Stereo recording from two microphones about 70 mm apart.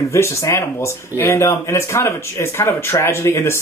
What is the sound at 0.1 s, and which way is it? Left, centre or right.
Speech, left.